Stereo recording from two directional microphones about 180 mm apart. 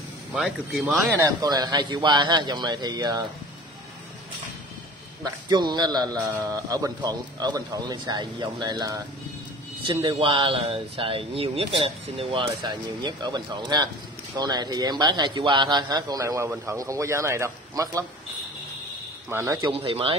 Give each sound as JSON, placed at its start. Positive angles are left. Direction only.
{"t": 0.3, "sound": "speech", "side_deg": -5}
{"t": 1.4, "sound": "speech", "side_deg": -20}
{"t": 5.2, "sound": "speech", "side_deg": -25}
{"t": 19.2, "sound": "speech", "side_deg": -15}
{"t": 19.7, "sound": "speech", "side_deg": -30}